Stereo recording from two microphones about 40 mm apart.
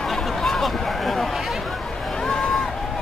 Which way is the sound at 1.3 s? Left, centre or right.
Centre.